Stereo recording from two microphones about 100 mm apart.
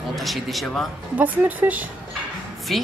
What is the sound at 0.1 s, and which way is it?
Speech, centre (ahead or behind).